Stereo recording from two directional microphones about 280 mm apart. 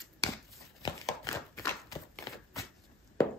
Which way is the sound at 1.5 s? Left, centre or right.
Centre.